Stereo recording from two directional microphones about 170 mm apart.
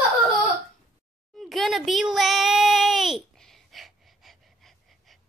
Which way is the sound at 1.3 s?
Centre (ahead or behind).